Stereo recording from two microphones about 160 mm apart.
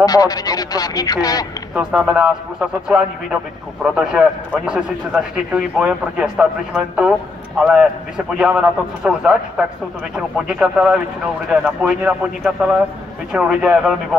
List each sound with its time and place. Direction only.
0.0 s speech: 25° left (ahead or behind)
1.8 s a man's voice: 5° right (ahead or behind)